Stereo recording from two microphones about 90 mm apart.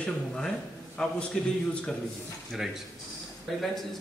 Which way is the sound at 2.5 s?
5° right (ahead or behind).